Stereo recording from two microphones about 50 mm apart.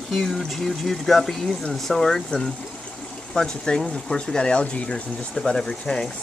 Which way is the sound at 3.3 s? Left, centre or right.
Centre.